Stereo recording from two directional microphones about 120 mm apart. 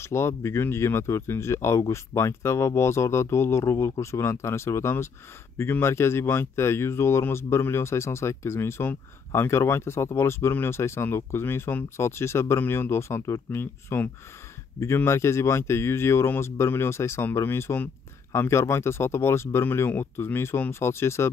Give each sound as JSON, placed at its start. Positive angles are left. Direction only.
{"t": 0.0, "sound": "speech", "side_deg": 20}